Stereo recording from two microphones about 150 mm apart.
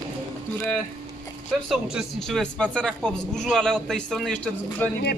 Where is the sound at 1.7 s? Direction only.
Centre (ahead or behind).